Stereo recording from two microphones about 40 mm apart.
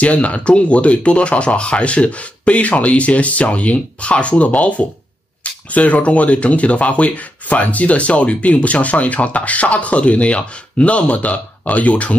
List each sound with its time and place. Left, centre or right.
0.0 s speech: left